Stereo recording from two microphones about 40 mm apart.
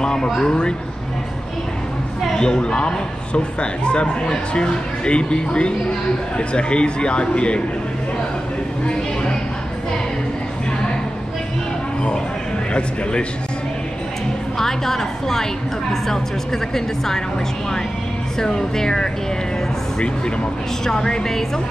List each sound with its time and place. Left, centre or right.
0.0 s speech: centre
2.3 s speech: centre
14.6 s a woman's voice: centre
16.7 s a woman's voice: centre
18.4 s a woman's voice: centre
20.8 s a woman's voice: centre